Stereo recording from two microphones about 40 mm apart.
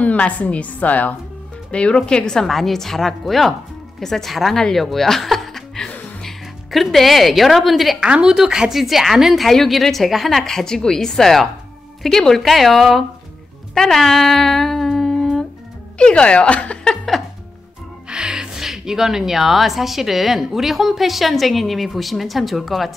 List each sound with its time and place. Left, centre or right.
0.0 s a woman's voice: left
1.7 s speech: left
2.4 s speech: centre
8.0 s a woman's voice: right; by 10.4 s centre
10.4 s a woman's voice: centre
13.7 s humming: centre
16.0 s speech: left
18.0 s speech: right; by 22.9 s centre